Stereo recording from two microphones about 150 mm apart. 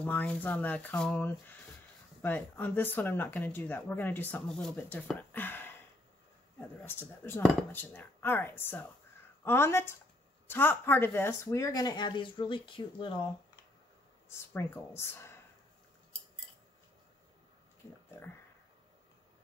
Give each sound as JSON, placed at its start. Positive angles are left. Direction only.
{"t": 0.0, "sound": "speech", "side_deg": 10}
{"t": 6.8, "sound": "speech", "side_deg": 15}
{"t": 14.5, "sound": "speech", "side_deg": 15}